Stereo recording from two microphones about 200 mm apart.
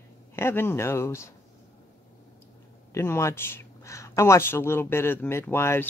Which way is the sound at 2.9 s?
15° left (ahead or behind).